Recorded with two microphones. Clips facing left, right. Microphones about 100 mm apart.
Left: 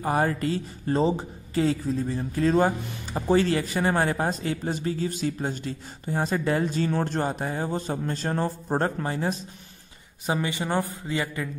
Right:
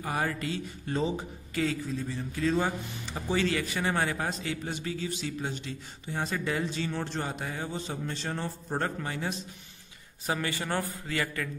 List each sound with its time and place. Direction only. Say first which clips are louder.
0.0 s a man's voice: left 7 dB; 40° left (ahead or behind)
10.2 s speech: left 4 dB; 20° left (ahead or behind)